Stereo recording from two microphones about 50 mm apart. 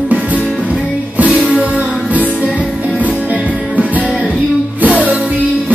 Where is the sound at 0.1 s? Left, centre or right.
Right.